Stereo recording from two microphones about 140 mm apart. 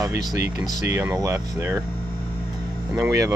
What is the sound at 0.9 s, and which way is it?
Speech, 15° right (ahead or behind).